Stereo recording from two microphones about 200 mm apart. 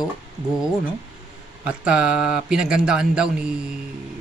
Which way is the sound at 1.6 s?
5° right (ahead or behind).